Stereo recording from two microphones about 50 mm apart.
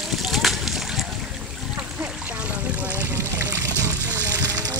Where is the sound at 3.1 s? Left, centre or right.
Right.